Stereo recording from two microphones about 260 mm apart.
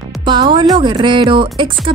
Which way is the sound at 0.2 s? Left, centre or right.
Centre.